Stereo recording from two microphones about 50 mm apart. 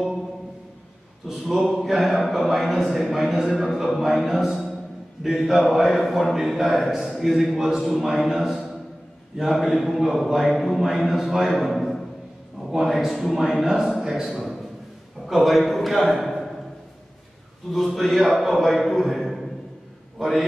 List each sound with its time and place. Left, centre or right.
1.4 s a sound: centre
2.2 s a man's voice: centre
13.9 s a man's voice: centre
15.2 s a man's voice: centre
17.7 s a man's voice: centre
18.0 s a man's voice: left
18.3 s a man's voice: centre